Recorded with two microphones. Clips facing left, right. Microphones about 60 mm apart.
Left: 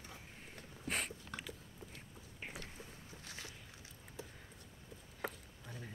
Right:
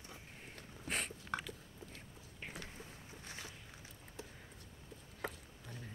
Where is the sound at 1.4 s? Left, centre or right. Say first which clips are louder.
Right 1 dB; centre.